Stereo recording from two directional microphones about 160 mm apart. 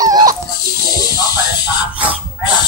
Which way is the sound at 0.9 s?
25° left (ahead or behind).